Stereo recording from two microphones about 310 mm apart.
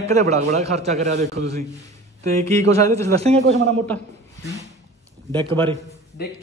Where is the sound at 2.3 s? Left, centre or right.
Centre.